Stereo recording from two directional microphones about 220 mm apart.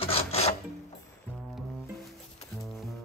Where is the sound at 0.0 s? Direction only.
25° left (ahead or behind).